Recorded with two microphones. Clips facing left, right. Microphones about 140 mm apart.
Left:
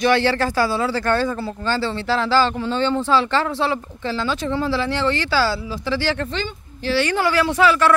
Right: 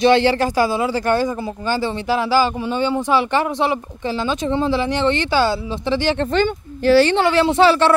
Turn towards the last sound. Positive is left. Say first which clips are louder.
# right 3 dB
turn(degrees=-30)  # may be behind; listen again after turning